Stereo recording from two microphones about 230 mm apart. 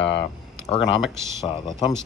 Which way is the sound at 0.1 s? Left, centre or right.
Left.